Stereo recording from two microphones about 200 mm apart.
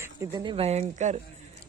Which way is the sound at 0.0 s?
15° right (ahead or behind).